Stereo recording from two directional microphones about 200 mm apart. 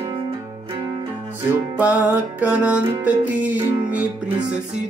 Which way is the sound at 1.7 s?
10° right (ahead or behind).